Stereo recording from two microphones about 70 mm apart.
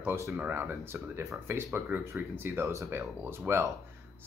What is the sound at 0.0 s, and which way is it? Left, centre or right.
Speech, right.